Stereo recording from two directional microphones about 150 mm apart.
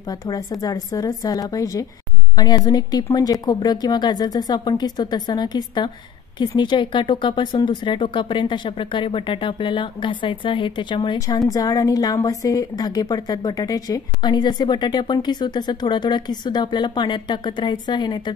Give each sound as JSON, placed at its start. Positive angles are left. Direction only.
{"t": 0.1, "sound": "speech", "side_deg": 25}